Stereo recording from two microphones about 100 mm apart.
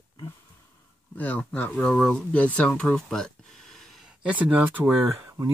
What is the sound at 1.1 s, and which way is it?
Speech, 15° left (ahead or behind).